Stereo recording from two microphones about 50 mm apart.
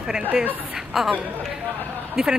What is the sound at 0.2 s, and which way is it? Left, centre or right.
Speech, right.